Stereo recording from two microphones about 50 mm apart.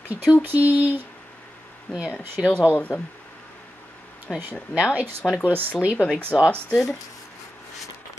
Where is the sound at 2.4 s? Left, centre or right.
Centre.